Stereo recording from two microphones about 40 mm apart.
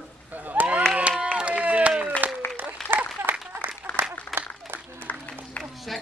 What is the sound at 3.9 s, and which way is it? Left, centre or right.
Applause, right.